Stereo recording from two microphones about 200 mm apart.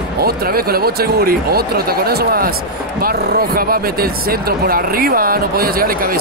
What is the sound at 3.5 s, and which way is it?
Speech, 50° right (ahead or behind).